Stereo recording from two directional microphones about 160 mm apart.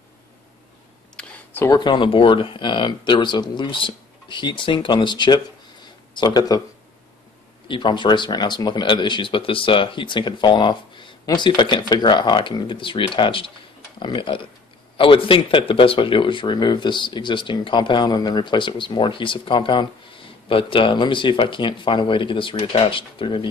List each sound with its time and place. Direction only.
1.1 s a sound: 10° left (ahead or behind)
1.8 s speech: 30° left (ahead or behind)
7.6 s speech: 30° left (ahead or behind)